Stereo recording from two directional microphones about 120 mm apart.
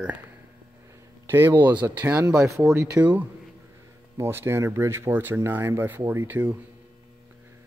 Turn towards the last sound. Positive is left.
turn(degrees=-15)  # may be behind; listen again after turning